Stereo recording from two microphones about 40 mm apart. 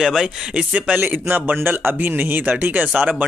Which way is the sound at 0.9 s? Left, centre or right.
Right.